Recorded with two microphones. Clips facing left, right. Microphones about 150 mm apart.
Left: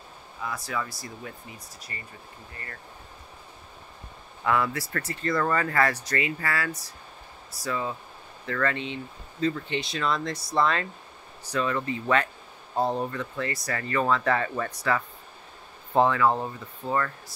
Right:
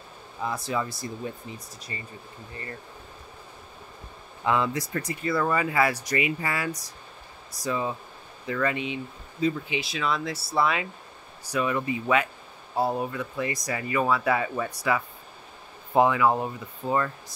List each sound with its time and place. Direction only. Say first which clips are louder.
0.4 s speech: right 3 dB; 25° right (ahead or behind)
4.5 s speech: right 1 dB; 20° right (ahead or behind)